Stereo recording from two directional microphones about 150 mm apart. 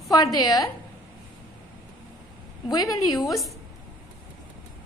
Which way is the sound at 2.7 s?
25° left (ahead or behind).